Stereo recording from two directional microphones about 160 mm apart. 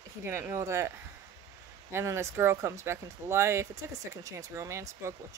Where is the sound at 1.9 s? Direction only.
15° right (ahead or behind).